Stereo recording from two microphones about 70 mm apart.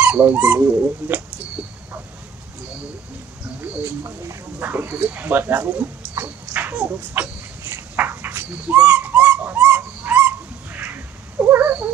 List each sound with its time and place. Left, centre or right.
0.0 s speech: right
0.6 s speech: right
4.6 s speech: right
7.9 s a sound: right
11.3 s cat: right